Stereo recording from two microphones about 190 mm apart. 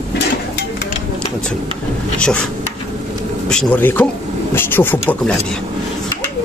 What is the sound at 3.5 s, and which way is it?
Speech, 5° left (ahead or behind).